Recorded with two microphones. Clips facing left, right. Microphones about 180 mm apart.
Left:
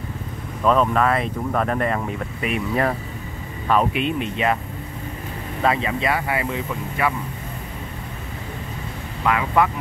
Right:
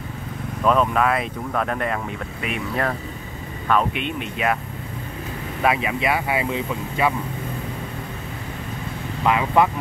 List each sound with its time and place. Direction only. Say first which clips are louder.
0.7 s speech: left 1 dB; 5° right (ahead or behind)
5.6 s speech: even; 10° right (ahead or behind)
9.2 s speech: right 1 dB; 20° right (ahead or behind)